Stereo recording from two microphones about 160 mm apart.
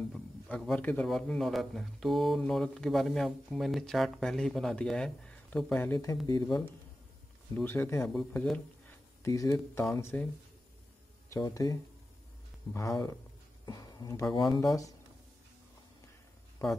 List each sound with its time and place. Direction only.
0.1 s a man's voice: 5° left (ahead or behind); by 6.6 s 25° left (ahead or behind)
7.5 s speech: 15° left (ahead or behind)
9.2 s speech: 20° left (ahead or behind)
11.3 s speech: 20° left (ahead or behind)